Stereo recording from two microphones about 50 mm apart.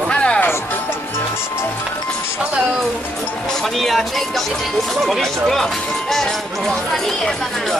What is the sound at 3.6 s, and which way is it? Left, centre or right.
Speech, centre.